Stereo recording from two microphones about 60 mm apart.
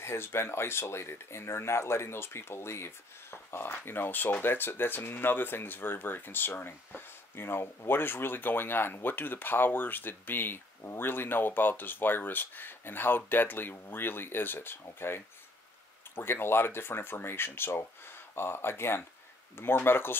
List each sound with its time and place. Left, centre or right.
0.0 s speech: left